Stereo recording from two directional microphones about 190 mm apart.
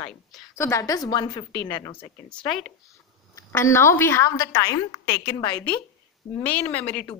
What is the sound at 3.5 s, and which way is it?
A woman's voice, 15° left (ahead or behind).